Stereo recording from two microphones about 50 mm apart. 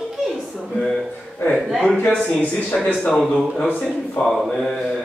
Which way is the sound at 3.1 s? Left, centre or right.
Centre.